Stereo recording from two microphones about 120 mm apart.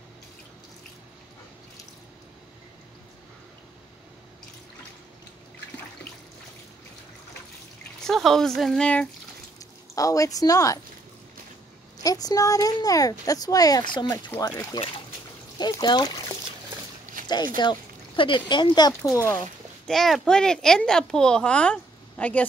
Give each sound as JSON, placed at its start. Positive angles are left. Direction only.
{"t": 8.1, "sound": "speech", "side_deg": 0}
{"t": 9.6, "sound": "speech", "side_deg": 30}
{"t": 12.0, "sound": "a child's voice", "side_deg": 30}
{"t": 15.5, "sound": "trickle", "side_deg": 35}
{"t": 17.0, "sound": "a sound", "side_deg": -90}
{"t": 17.3, "sound": "speech", "side_deg": 35}
{"t": 19.1, "sound": "speech", "side_deg": 20}
{"t": 19.9, "sound": "a child's voice", "side_deg": 5}